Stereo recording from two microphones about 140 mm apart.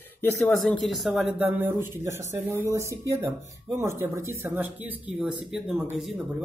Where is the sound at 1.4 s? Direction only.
15° right (ahead or behind).